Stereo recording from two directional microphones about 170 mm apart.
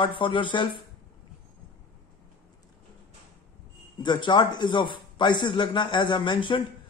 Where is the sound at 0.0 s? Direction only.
30° left (ahead or behind).